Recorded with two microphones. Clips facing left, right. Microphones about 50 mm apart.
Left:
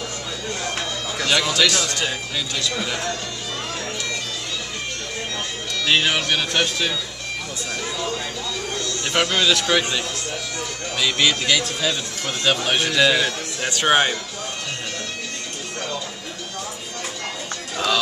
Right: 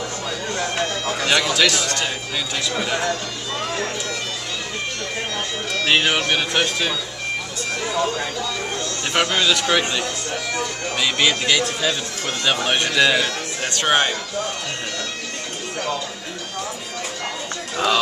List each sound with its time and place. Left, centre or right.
1.3 s speech: centre
2.3 s speech: centre
5.9 s speech: centre
7.9 s speech: right
9.1 s a man's voice: centre
17.7 s speech: centre